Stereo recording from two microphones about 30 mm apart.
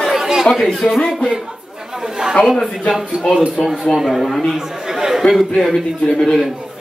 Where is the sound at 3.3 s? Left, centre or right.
Centre.